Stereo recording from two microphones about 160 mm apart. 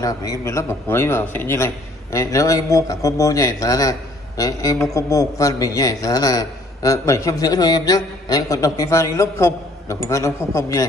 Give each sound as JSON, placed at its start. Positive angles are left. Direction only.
{"t": 0.0, "sound": "a man's voice", "side_deg": 20}